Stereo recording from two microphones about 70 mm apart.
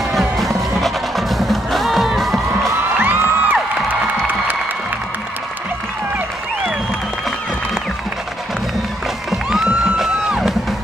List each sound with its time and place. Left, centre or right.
0.1 s music: centre
3.0 s music: right
3.9 s cheering: right
9.9 s music: centre